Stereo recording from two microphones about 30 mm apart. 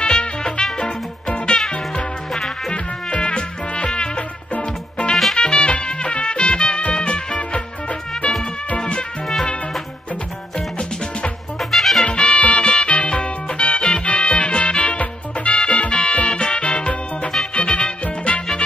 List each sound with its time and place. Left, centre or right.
0.0 s music: left
2.7 s music: left
8.7 s music: left
11.7 s music: centre
12.0 s music: left